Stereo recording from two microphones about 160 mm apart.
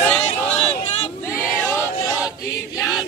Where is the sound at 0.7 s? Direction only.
45° left (ahead or behind).